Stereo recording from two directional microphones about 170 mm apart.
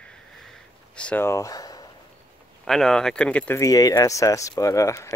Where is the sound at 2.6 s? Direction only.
Centre (ahead or behind).